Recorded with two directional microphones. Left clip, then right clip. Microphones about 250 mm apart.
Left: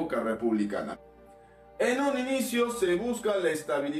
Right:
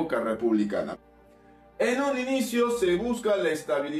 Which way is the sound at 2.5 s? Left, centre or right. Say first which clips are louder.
Right 4 dB; centre.